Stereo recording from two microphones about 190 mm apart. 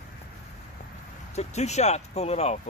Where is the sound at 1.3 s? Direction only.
35° left (ahead or behind).